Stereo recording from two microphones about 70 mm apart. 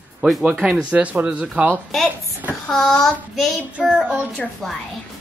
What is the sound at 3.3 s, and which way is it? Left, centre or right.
Child singing, centre.